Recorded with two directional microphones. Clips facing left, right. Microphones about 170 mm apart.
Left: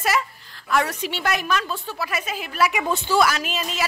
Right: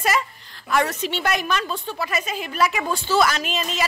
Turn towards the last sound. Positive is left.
turn(degrees=5)  # may be behind; listen again after turning